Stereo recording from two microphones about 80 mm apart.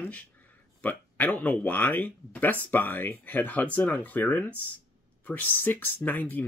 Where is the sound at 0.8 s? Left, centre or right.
Left.